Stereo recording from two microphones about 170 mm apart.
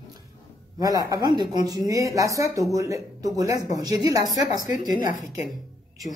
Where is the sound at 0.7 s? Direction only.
20° right (ahead or behind).